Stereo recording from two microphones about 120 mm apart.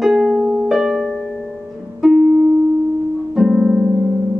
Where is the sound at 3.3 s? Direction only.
5° right (ahead or behind).